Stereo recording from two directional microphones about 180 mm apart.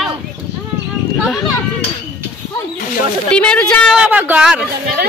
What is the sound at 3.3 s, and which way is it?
Speech, 5° left (ahead or behind).